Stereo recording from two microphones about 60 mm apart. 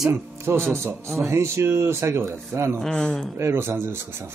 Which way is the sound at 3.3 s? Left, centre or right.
Right.